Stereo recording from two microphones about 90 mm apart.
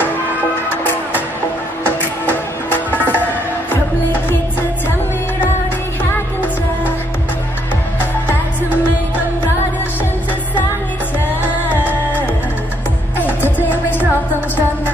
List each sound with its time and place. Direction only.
1.9 s music: 20° left (ahead or behind)
11.4 s music: 20° right (ahead or behind)
13.6 s music: 20° left (ahead or behind)